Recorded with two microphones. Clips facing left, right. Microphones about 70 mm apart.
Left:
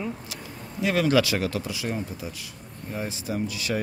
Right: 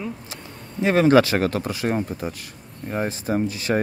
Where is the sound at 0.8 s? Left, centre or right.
Right.